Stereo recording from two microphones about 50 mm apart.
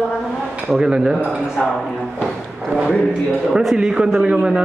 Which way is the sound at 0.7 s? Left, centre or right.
Centre.